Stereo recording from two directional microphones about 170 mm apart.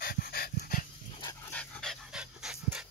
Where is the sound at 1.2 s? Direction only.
10° left (ahead or behind).